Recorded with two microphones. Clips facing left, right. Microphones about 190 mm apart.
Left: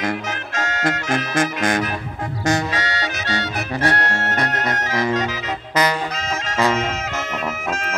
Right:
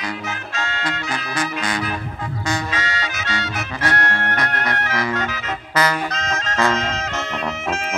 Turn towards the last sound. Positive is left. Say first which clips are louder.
# left 1 dB
turn(degrees=10)  # may be behind; listen again after turning